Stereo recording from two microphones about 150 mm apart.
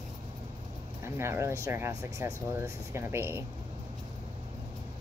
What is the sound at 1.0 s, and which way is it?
Speech, 15° right (ahead or behind).